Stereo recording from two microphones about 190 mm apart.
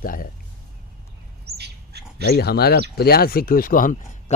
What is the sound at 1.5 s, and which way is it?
Bird, 60° right (ahead or behind).